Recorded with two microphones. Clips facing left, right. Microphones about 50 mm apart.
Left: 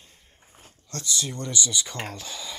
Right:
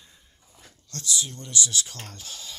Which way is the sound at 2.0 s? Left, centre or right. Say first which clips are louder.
Left 9 dB; left.